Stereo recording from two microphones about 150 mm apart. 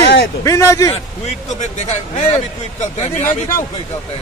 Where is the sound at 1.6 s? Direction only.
50° left (ahead or behind).